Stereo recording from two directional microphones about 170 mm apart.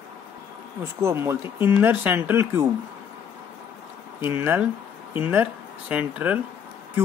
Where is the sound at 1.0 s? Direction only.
15° right (ahead or behind).